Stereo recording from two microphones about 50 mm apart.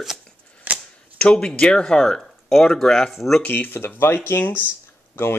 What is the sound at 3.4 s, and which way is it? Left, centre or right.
Speech, left.